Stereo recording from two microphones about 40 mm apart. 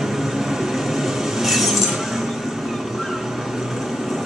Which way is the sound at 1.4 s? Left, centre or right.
Centre.